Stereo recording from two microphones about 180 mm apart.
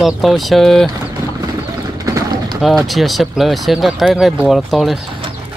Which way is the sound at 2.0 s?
20° right (ahead or behind).